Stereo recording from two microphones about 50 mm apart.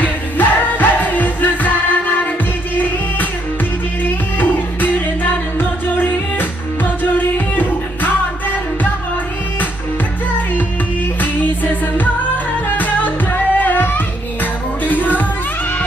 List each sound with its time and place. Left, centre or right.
0.0 s music: left
4.0 s music: left
11.1 s music: left